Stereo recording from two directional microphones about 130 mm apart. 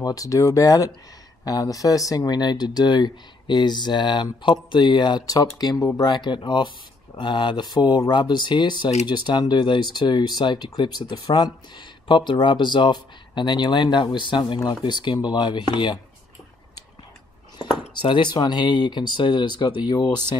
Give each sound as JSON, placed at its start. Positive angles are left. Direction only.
{"t": 0.0, "sound": "speech", "side_deg": 25}
{"t": 17.9, "sound": "speech", "side_deg": 35}